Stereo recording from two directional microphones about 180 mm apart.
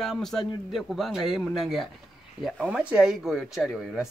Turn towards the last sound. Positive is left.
turn(degrees=0)  # may be behind; listen again after turning